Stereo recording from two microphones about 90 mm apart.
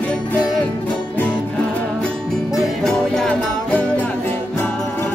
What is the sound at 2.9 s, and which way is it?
Music, 10° left (ahead or behind).